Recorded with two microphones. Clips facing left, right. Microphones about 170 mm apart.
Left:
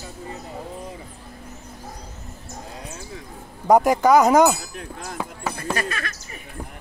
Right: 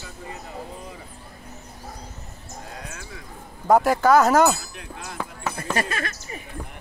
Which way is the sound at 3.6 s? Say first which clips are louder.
Left 2 dB; 15° left (ahead or behind).